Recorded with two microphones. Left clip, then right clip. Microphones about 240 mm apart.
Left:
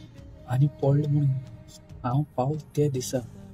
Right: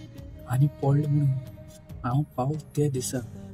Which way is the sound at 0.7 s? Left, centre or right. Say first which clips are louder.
Left 3 dB; centre.